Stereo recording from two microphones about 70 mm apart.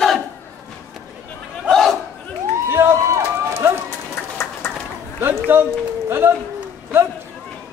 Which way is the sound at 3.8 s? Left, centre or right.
Left.